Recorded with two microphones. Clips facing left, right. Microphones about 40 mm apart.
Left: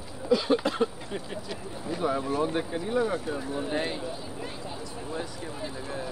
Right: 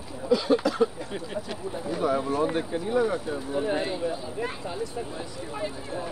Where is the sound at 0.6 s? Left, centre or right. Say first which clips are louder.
Right 3 dB; left.